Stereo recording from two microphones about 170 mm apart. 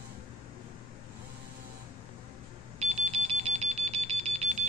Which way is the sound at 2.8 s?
40° right (ahead or behind).